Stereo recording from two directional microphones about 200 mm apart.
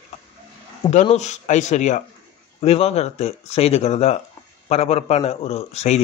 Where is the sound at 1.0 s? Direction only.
35° left (ahead or behind).